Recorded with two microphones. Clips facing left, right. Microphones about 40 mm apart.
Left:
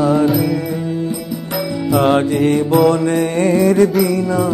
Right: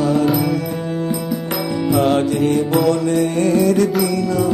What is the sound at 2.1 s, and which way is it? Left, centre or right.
Mantra, left.